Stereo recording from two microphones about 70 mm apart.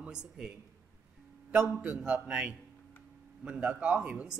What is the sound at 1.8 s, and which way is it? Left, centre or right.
A man's voice, centre.